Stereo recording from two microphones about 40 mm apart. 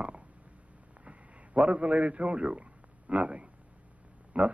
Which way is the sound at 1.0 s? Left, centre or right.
Right.